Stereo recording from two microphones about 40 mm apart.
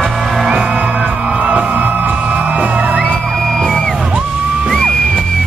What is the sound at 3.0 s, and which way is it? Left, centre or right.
Music, centre.